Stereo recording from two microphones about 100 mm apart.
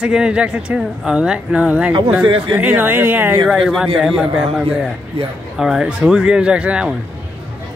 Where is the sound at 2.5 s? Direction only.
20° right (ahead or behind).